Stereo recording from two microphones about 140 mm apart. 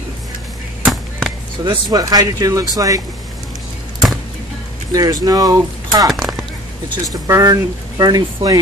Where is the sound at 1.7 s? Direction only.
25° right (ahead or behind).